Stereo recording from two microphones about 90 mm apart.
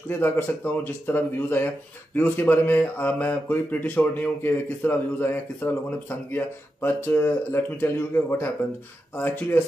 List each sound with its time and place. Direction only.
0.2 s speech: 25° left (ahead or behind)